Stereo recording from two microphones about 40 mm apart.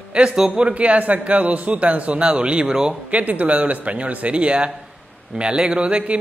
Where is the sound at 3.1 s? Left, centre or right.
Right.